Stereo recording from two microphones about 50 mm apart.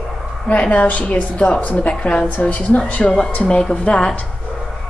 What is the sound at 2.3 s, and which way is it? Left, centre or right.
A woman's voice, left.